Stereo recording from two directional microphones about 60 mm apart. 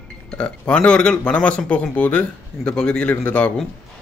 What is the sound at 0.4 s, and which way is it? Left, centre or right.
Speech, centre.